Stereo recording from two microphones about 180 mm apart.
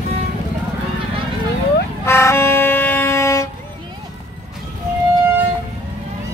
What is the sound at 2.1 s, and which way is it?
Vehicle, 15° left (ahead or behind).